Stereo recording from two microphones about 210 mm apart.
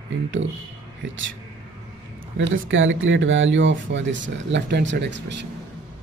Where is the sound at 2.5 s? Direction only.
65° right (ahead or behind).